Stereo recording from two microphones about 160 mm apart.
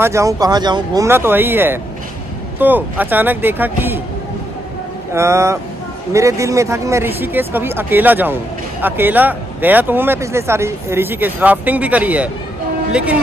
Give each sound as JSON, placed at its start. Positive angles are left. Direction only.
{"t": 0.0, "sound": "speech", "side_deg": -20}
{"t": 5.1, "sound": "speech", "side_deg": -20}